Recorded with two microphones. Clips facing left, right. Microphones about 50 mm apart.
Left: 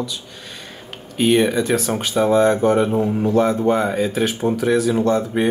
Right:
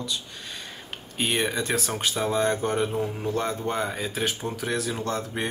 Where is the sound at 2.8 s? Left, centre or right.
Left.